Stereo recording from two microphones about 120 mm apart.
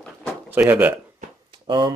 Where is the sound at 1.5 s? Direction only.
40° right (ahead or behind).